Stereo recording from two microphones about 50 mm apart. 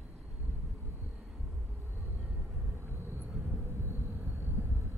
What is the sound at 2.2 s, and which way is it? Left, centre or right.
Vehicle, right.